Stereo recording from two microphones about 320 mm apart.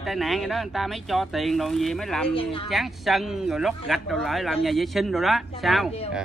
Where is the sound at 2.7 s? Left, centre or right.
Centre.